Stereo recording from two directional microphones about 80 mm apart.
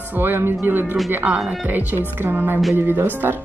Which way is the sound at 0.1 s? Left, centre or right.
Right.